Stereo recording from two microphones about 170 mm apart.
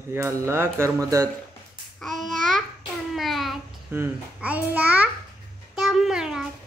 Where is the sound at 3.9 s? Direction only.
10° right (ahead or behind).